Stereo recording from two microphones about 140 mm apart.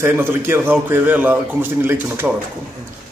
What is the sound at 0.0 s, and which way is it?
A man's voice, 15° right (ahead or behind).